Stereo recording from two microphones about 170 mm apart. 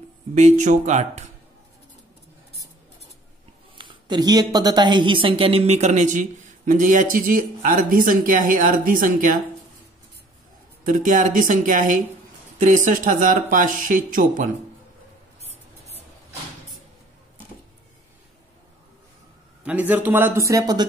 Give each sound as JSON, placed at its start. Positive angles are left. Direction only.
{"t": 0.3, "sound": "a woman's voice", "side_deg": -45}
{"t": 3.7, "sound": "a woman's voice", "side_deg": -25}
{"t": 10.8, "sound": "a woman's voice", "side_deg": -50}
{"t": 15.4, "sound": "a sound", "side_deg": -40}
{"t": 19.6, "sound": "a man's voice", "side_deg": -10}